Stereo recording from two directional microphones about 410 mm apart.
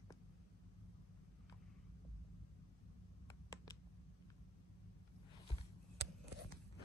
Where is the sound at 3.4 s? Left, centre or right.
Centre.